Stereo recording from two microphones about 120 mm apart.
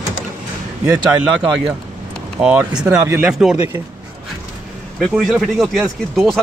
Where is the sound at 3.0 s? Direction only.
20° right (ahead or behind).